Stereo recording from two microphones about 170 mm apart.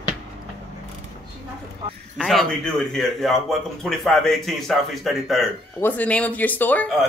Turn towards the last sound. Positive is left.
turn(degrees=10)  # may be behind; listen again after turning